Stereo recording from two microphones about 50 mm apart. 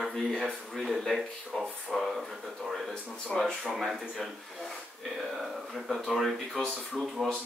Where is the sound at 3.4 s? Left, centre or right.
Centre.